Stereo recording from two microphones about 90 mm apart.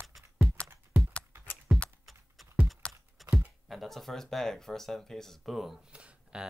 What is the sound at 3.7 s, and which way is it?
Speech, centre (ahead or behind).